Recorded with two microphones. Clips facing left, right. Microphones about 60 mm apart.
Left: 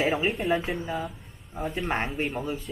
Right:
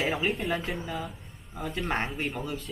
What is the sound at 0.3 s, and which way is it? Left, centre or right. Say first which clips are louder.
Speech: left 4 dB; centre.